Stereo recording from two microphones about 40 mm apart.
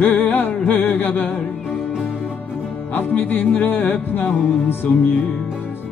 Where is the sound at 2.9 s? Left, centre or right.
Left.